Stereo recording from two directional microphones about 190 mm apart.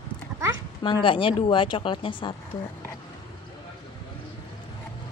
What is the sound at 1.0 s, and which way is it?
Speech, 25° left (ahead or behind).